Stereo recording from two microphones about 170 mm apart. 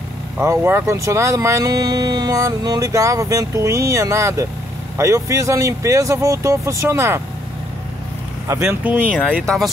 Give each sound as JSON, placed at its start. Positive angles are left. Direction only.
{"t": 0.4, "sound": "speech", "side_deg": -15}
{"t": 8.5, "sound": "speech", "side_deg": -15}